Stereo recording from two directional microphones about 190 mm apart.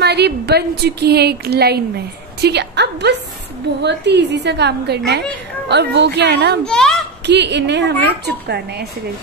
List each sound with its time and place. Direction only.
0.0 s a woman's voice: 60° right (ahead or behind)
6.6 s a child's voice: 5° left (ahead or behind)
7.2 s a woman's voice: 65° right (ahead or behind)